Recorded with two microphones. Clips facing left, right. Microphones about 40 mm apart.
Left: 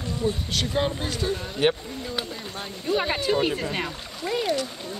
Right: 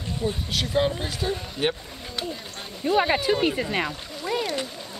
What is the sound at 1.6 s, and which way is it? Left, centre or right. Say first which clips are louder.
Speech: left 6 dB; centre.